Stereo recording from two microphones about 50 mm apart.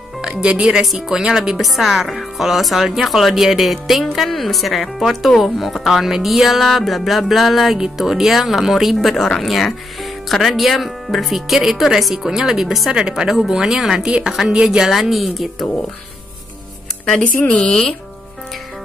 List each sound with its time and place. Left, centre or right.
0.3 s speech: right
0.9 s speech: centre
9.1 s speech: centre
14.9 s speech: centre
17.0 s speech: centre